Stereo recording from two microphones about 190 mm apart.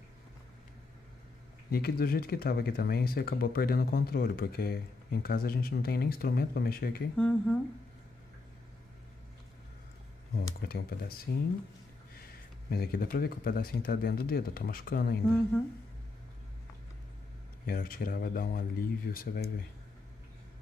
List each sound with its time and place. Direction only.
1.7 s speech: 50° left (ahead or behind)
7.2 s speech: 5° left (ahead or behind)
10.3 s speech: 55° left (ahead or behind)
17.6 s speech: 50° left (ahead or behind)